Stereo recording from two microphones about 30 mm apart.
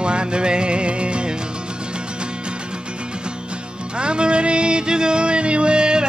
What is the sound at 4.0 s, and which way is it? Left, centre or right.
Music, right.